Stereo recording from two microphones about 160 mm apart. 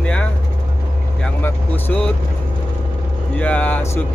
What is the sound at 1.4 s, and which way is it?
Speech, 10° left (ahead or behind).